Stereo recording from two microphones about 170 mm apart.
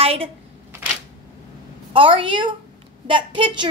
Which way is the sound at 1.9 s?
30° right (ahead or behind).